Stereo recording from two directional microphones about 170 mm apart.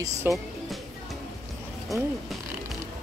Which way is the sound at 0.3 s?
10° right (ahead or behind).